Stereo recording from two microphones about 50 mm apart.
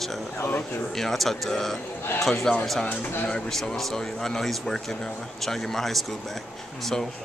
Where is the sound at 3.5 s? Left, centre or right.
Centre.